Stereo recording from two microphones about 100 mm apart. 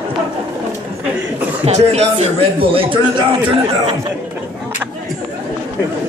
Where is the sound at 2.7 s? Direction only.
65° right (ahead or behind).